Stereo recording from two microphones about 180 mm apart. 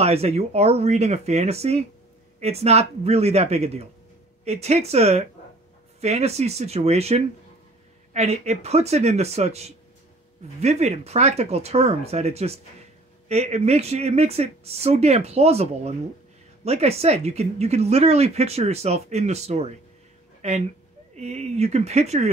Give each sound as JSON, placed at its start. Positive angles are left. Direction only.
{"t": 0.0, "sound": "speech", "side_deg": -35}